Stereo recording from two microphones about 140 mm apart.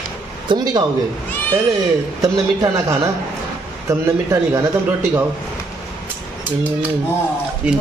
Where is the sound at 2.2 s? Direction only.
25° right (ahead or behind).